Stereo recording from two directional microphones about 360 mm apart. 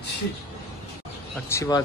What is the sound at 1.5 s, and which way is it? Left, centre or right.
Speech, centre.